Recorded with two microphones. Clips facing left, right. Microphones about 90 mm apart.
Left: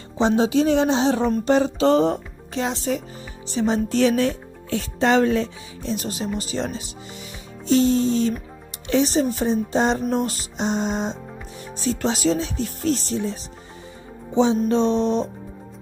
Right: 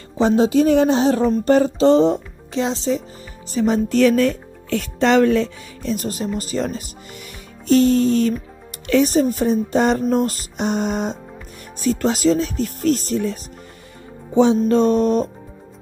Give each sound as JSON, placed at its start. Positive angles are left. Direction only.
{"t": 0.4, "sound": "speech", "side_deg": -45}
{"t": 1.8, "sound": "music", "side_deg": -30}
{"t": 2.0, "sound": "music", "side_deg": 45}
{"t": 3.4, "sound": "speech", "side_deg": -45}
{"t": 4.6, "sound": "speech", "side_deg": -70}
{"t": 5.9, "sound": "speech", "side_deg": -45}
{"t": 10.1, "sound": "music", "side_deg": -45}
{"t": 11.8, "sound": "speech", "side_deg": -45}
{"t": 14.3, "sound": "music", "side_deg": -55}
{"t": 14.7, "sound": "speech", "side_deg": -50}